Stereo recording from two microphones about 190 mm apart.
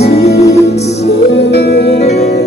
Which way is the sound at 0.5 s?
35° left (ahead or behind).